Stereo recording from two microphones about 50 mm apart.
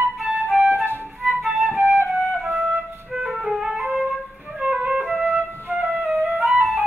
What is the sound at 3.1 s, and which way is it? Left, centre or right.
Music, centre.